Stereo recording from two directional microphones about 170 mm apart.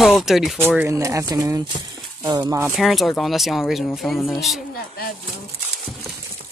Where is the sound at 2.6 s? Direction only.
Centre (ahead or behind).